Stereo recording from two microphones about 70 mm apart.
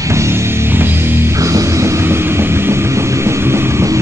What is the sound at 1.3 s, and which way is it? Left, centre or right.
Vehicle, right.